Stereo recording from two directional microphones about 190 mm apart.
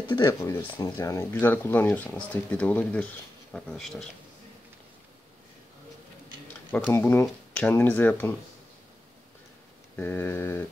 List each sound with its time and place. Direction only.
0.1 s speech: 20° left (ahead or behind); by 4.1 s 5° left (ahead or behind)
6.7 s speech: 10° left (ahead or behind)
9.9 s speech: 10° left (ahead or behind)